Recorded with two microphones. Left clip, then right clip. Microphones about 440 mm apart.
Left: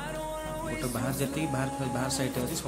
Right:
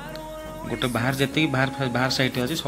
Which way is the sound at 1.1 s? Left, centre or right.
Left.